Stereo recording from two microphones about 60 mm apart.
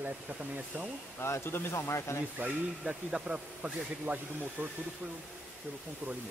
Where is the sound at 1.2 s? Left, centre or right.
Left.